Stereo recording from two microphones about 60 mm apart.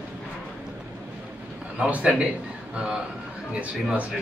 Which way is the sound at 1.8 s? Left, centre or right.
Right.